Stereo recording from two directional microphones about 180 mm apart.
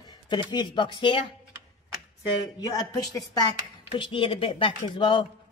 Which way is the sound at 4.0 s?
30° left (ahead or behind).